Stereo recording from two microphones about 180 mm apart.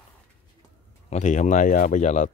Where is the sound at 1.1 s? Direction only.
40° left (ahead or behind).